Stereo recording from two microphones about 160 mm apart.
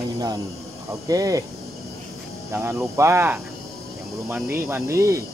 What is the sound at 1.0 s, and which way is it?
Speech, 20° right (ahead or behind).